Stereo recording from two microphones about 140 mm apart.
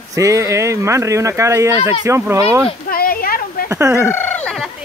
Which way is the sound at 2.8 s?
90° left.